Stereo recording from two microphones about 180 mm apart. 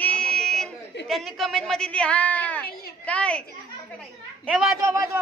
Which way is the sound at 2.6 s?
55° left (ahead or behind).